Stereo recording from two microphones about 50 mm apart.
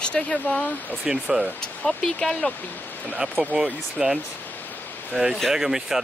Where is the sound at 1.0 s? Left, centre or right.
Centre.